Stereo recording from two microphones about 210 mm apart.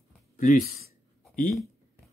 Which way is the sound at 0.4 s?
40° left (ahead or behind).